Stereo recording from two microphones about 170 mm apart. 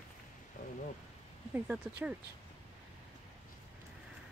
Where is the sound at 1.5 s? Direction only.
10° right (ahead or behind).